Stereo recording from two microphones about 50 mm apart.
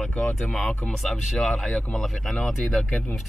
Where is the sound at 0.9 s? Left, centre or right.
Centre.